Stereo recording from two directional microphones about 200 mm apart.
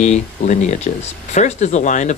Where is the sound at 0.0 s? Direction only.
35° left (ahead or behind).